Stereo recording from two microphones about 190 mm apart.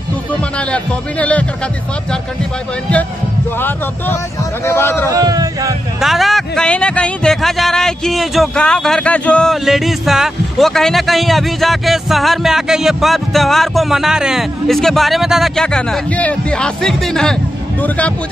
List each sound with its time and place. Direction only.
0.4 s speech: 5° left (ahead or behind)
3.5 s speech: 10° left (ahead or behind)
5.1 s speech: 20° right (ahead or behind)
5.9 s speech: centre (ahead or behind)